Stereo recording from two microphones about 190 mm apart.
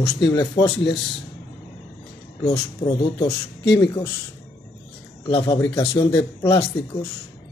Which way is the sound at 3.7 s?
20° left (ahead or behind).